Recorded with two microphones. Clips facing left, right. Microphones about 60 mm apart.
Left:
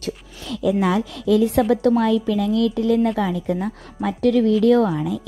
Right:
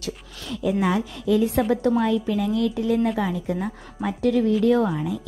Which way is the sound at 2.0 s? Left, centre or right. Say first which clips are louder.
Left 3 dB; left.